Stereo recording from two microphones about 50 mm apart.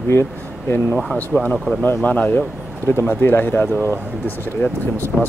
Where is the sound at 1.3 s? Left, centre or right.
Left.